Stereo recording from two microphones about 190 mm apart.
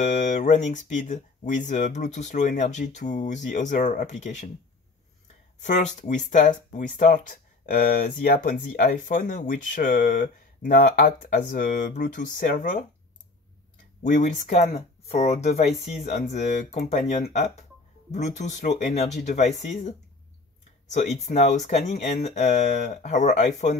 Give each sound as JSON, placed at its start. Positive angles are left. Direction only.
{"t": 0.0, "sound": "speech", "side_deg": 40}
{"t": 5.6, "sound": "speech", "side_deg": 40}
{"t": 14.0, "sound": "speech", "side_deg": 40}
{"t": 18.1, "sound": "speech", "side_deg": 35}
{"t": 20.9, "sound": "speech", "side_deg": 40}